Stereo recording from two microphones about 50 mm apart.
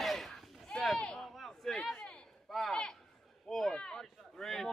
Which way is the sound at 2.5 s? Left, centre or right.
Centre.